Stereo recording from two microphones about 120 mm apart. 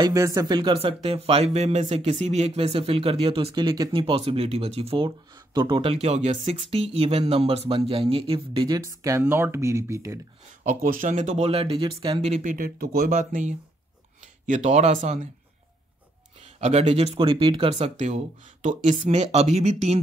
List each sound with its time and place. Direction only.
0.0 s speech: 30° right (ahead or behind)
0.7 s speech: 55° right (ahead or behind)
3.5 s speech: 30° right (ahead or behind)
3.9 s speech: 55° right (ahead or behind)
5.9 s speech: 65° right (ahead or behind); by 8.6 s 50° right (ahead or behind)
8.6 s speech: 30° right (ahead or behind)
10.6 s speech: 90° right; by 12.2 s 45° right (ahead or behind)
12.2 s speech: 65° right (ahead or behind)
13.1 s speech: 90° right
16.5 s speech: 65° right (ahead or behind); by 18.9 s 85° right
19.0 s speech: 65° right (ahead or behind)